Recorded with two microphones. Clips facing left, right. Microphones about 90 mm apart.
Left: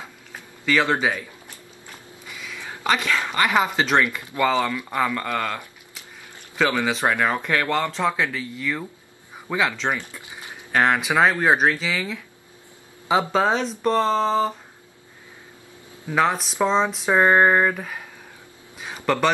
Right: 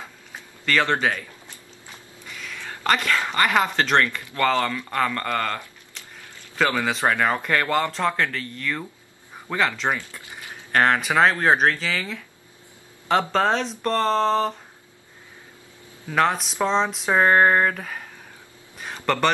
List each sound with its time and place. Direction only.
0.7 s speech: 5° left (ahead or behind)
1.0 s a sound: 10° left (ahead or behind)
2.2 s speech: 5° left (ahead or behind)
4.2 s speech: 20° left (ahead or behind)
4.5 s speech: 10° left (ahead or behind)
6.0 s a sound: 10° left (ahead or behind)
6.9 s speech: centre (ahead or behind)
13.3 s speech: 5° left (ahead or behind)
16.2 s speech: centre (ahead or behind)
19.0 s speech: 5° left (ahead or behind)